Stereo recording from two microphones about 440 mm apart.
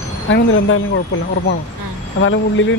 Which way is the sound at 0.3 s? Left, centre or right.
Left.